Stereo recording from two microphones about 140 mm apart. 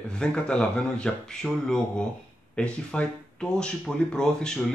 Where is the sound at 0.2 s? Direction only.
5° left (ahead or behind).